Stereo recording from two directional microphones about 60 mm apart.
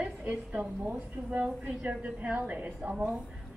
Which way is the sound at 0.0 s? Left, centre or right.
Right.